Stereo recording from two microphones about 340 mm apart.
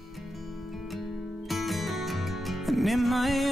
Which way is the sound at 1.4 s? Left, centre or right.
Centre.